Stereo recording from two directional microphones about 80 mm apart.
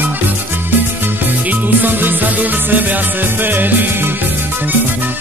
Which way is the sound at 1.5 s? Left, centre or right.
Right.